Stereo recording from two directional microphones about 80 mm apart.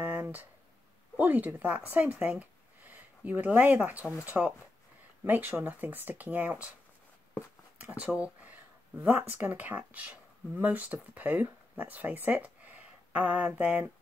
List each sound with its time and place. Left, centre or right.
0.0 s a sound: right
1.1 s speech: right
7.8 s speech: centre